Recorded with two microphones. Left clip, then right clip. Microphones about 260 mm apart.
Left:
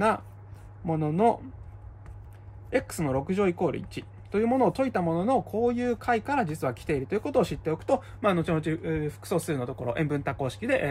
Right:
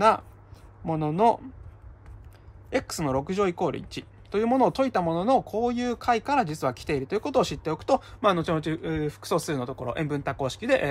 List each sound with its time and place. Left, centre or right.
0.8 s speech: centre
2.7 s speech: centre